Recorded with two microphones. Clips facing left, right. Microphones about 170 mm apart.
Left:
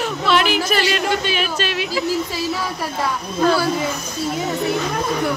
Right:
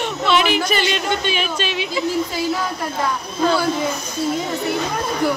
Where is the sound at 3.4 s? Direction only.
Centre (ahead or behind).